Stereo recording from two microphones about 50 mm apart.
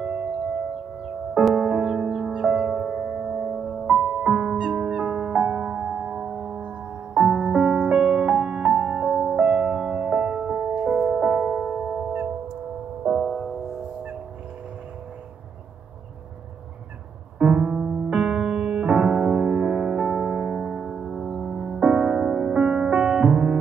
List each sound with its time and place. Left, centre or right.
0.0 s singing bowl: centre
1.5 s music: centre
3.5 s music: centre
4.1 s music: right
13.2 s music: centre
17.4 s music: right